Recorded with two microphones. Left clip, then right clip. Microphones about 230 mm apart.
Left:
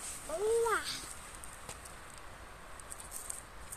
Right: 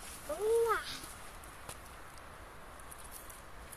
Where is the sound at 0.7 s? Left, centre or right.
Left.